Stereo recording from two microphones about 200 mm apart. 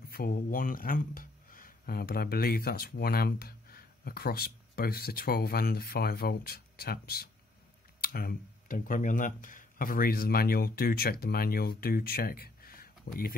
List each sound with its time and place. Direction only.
0.1 s speech: 45° left (ahead or behind)